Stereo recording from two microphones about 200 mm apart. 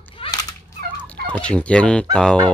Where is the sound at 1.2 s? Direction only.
5° left (ahead or behind).